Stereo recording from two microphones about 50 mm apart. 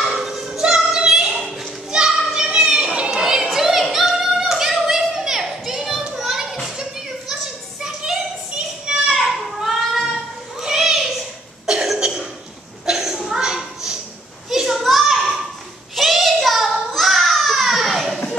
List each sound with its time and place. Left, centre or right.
0.0 s music: centre
0.9 s a sound: centre
1.9 s children playing: centre
3.2 s a sound: centre
9.0 s children playing: centre
10.6 s a sound: centre
11.6 s cough: centre
12.8 s chuckle: centre
14.5 s children playing: centre
16.0 s child singing: centre